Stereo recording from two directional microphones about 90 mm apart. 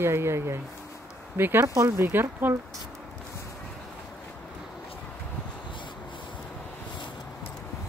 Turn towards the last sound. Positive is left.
turn(degrees=65)  # may be behind; listen again after turning